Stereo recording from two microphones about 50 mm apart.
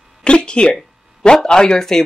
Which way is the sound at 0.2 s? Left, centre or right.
Centre.